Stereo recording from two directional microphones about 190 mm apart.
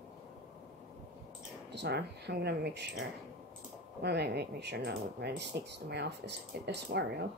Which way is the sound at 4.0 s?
60° right (ahead or behind).